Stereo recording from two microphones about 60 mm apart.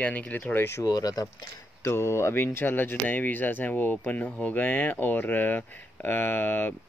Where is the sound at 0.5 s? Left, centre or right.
Left.